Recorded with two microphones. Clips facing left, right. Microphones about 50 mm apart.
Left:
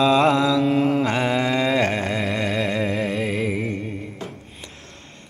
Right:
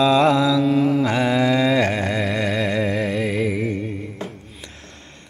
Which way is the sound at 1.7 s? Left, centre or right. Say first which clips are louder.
Right 1 dB; centre.